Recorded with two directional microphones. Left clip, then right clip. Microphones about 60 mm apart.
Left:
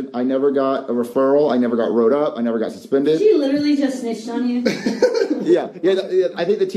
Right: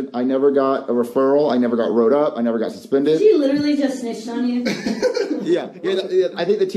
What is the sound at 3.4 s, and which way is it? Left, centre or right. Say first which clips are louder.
Speech: even; right.